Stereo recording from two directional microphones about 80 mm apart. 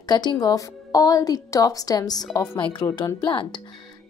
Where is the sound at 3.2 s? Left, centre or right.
Left.